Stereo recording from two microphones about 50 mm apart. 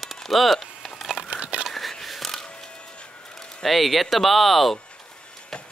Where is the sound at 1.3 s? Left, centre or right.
Right.